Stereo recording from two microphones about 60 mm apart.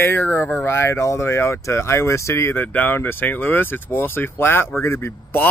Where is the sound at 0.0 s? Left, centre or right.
Left.